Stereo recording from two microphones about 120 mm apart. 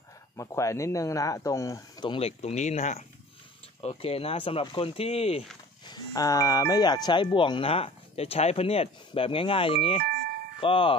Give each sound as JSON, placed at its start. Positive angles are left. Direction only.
{"t": 0.4, "sound": "speech", "side_deg": 25}
{"t": 2.1, "sound": "speech", "side_deg": 60}
{"t": 3.8, "sound": "speech", "side_deg": 55}
{"t": 5.9, "sound": "speech", "side_deg": 30}